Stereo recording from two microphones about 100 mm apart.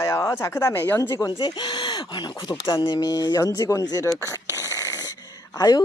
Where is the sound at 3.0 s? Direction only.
40° left (ahead or behind).